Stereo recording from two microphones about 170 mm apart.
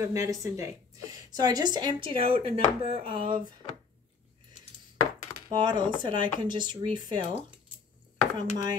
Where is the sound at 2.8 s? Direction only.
35° right (ahead or behind).